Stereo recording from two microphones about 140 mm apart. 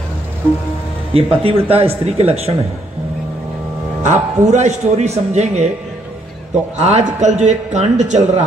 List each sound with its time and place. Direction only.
1.1 s a man's voice: 45° right (ahead or behind)
4.0 s a man's voice: 55° right (ahead or behind)
6.8 s a man's voice: 55° right (ahead or behind)